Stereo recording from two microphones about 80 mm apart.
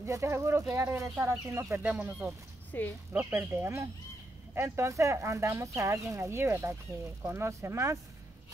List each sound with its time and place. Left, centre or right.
0.0 s speech: right
1.8 s speech: right
2.7 s speech: left
3.1 s speech: right